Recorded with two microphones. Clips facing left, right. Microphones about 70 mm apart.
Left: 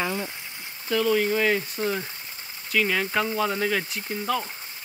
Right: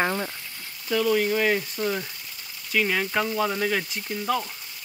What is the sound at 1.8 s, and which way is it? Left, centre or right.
Speech, centre.